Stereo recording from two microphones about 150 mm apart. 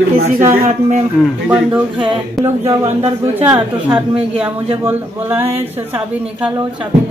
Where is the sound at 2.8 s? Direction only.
45° right (ahead or behind).